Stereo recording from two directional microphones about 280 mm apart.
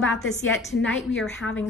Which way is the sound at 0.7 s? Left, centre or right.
Left.